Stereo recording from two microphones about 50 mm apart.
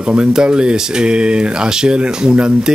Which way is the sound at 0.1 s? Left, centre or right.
Centre.